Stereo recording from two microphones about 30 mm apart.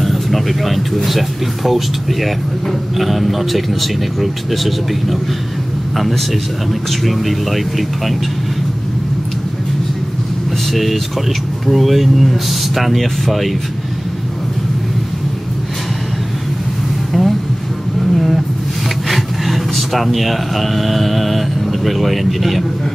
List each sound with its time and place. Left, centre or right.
0.0 s speech: centre
6.7 s speech: centre
10.7 s speech: centre
17.1 s music: centre
18.1 s vehicle: centre
19.0 s speech: centre